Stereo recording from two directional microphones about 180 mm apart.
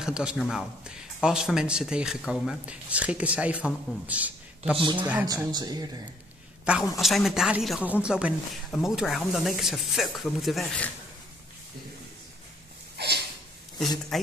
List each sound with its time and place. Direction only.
0.0 s a man's voice: 5° right (ahead or behind)
5.2 s speech: 20° right (ahead or behind)
6.6 s a man's voice: 5° right (ahead or behind)
12.9 s a sound: 65° right (ahead or behind)
14.1 s a man's voice: centre (ahead or behind)